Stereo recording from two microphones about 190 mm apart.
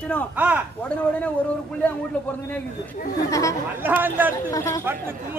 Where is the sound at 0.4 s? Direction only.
10° right (ahead or behind).